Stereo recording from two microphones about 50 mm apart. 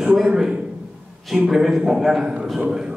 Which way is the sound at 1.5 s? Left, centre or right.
Centre.